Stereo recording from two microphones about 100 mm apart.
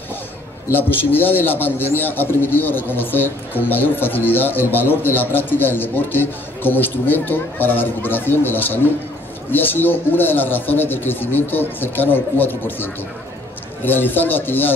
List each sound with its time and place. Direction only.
0.7 s a man's voice: 20° left (ahead or behind)